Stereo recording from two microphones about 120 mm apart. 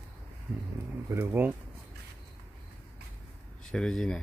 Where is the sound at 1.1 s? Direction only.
20° right (ahead or behind).